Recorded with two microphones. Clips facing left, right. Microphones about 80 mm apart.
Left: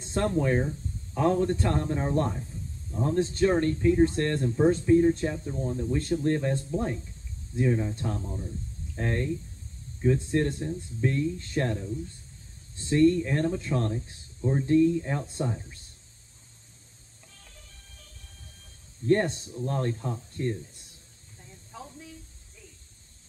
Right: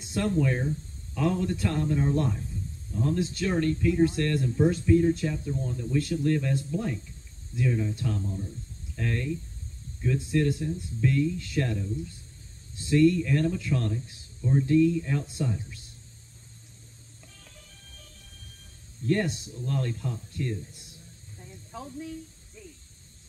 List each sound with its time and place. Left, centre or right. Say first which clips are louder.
0.0 s speech: even; left
19.0 s speech: left 3 dB; left
21.7 s a sound: right 3 dB; centre